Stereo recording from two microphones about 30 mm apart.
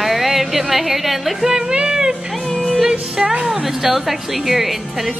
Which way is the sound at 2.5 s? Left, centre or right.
Centre.